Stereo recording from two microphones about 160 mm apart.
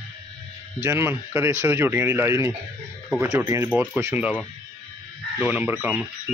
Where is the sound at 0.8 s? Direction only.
15° right (ahead or behind).